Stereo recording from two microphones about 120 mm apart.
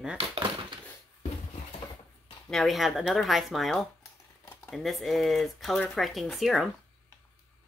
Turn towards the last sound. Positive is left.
turn(degrees=0)  # may be behind; listen again after turning